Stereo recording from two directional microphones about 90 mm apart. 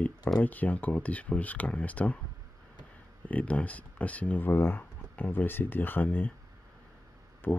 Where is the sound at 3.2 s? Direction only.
15° left (ahead or behind).